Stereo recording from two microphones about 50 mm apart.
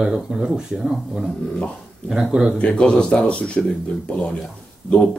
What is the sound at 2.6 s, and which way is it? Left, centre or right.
Speech, centre.